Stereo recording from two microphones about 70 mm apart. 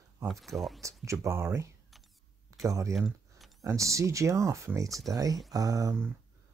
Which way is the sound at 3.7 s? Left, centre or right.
Right.